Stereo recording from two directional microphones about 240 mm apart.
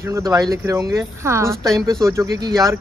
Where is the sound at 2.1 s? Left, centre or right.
Centre.